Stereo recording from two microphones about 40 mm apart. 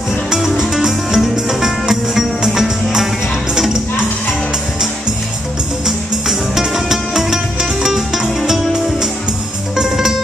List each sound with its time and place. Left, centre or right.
0.3 s music: centre
5.9 s music: centre
9.8 s music: centre